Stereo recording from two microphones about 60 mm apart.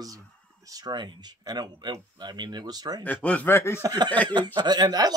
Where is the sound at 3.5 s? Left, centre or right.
Left.